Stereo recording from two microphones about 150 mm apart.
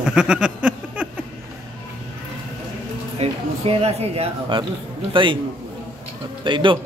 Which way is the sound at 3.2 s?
40° right (ahead or behind).